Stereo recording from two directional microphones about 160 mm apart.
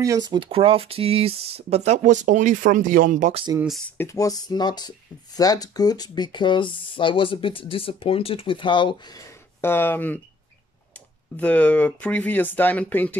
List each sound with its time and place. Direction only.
0.0 s speech: 25° right (ahead or behind); by 3.3 s 50° right (ahead or behind)
4.0 s speech: 20° left (ahead or behind)
9.6 s speech: 15° left (ahead or behind)